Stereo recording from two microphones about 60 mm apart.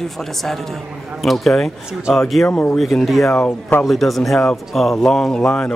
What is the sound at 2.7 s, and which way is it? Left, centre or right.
Speech, centre.